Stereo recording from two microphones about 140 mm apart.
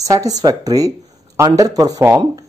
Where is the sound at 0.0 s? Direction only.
25° right (ahead or behind).